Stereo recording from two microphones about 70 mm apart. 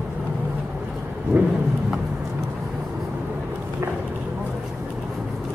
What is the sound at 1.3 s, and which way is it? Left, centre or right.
Thunder, right.